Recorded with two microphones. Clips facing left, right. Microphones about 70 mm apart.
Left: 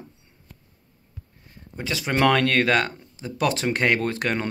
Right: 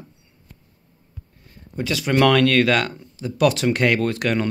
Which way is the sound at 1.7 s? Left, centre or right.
Left.